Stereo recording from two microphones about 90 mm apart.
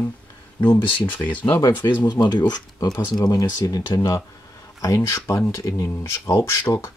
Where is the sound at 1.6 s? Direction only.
50° left (ahead or behind).